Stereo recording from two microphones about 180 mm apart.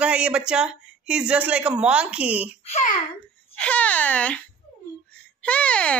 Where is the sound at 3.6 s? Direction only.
10° left (ahead or behind).